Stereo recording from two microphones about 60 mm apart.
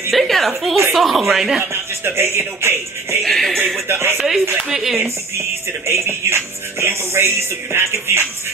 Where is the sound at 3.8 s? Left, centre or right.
Right.